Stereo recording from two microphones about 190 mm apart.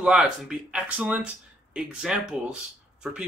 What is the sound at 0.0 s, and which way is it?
Speech, 5° right (ahead or behind).